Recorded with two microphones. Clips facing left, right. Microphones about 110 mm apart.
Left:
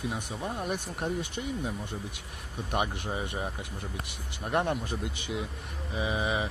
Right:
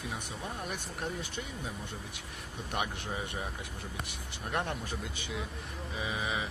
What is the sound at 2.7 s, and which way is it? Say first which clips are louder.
Speech: left 5 dB; 15° left (ahead or behind).